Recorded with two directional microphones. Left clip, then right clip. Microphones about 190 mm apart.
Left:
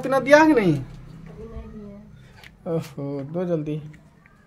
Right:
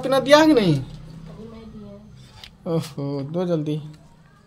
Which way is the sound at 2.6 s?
10° right (ahead or behind).